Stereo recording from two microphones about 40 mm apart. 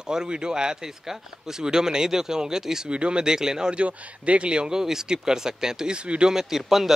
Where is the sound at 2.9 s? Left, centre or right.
Right.